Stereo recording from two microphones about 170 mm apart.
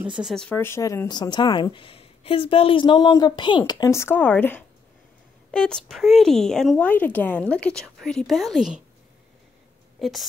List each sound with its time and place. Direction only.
0.2 s speech: centre (ahead or behind)
9.9 s speech: centre (ahead or behind)